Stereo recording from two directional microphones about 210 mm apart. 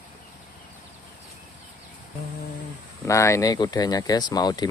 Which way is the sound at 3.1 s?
15° left (ahead or behind).